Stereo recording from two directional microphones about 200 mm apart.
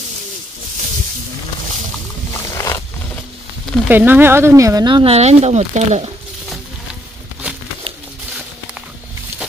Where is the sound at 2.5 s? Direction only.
15° left (ahead or behind).